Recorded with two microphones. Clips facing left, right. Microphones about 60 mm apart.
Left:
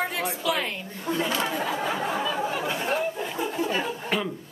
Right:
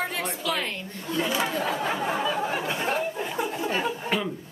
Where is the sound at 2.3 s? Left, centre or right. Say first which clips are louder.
Even; centre.